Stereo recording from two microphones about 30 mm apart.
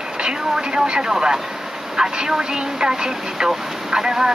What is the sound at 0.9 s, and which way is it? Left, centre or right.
Speech, right.